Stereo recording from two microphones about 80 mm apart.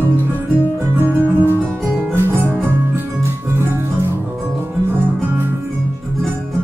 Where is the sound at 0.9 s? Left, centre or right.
Right.